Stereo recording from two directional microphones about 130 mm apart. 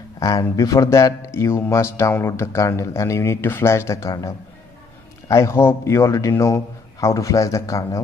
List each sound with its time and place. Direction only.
0.2 s speech: 30° left (ahead or behind)